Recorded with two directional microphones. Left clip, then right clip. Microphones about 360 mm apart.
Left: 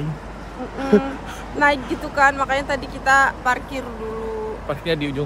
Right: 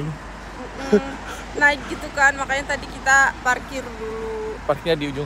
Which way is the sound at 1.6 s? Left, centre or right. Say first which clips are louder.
Even; centre.